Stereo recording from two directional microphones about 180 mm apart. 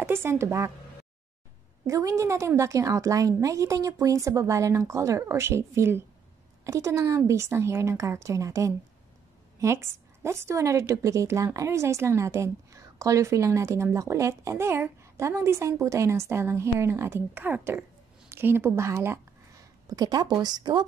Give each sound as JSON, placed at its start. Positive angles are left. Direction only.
{"t": 0.0, "sound": "speech", "side_deg": -15}
{"t": 1.9, "sound": "a woman's voice", "side_deg": -15}